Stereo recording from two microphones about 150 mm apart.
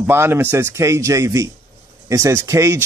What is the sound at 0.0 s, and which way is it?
Speech, 15° right (ahead or behind).